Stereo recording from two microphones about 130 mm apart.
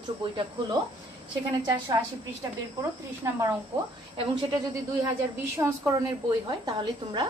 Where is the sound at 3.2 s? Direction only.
20° right (ahead or behind).